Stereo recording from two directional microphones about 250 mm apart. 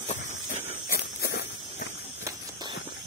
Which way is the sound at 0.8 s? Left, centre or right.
Left.